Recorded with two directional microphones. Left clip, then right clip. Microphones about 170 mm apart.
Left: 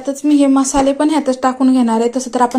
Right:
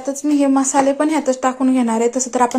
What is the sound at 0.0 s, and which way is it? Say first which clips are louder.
Speech: left 4 dB; 10° right (ahead or behind).